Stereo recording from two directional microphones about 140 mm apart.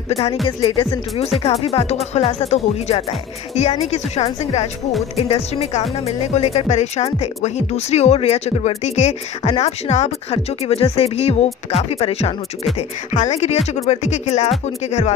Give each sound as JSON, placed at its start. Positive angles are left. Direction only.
{"t": 0.1, "sound": "speech", "side_deg": 45}
{"t": 12.7, "sound": "speech", "side_deg": 55}